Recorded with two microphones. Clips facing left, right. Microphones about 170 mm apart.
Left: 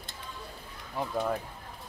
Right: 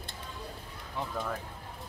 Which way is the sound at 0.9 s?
20° left (ahead or behind).